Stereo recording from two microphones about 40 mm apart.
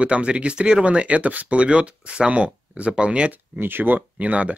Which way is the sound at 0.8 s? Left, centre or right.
Right.